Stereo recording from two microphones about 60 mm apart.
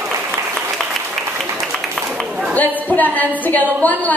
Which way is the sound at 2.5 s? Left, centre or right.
Left.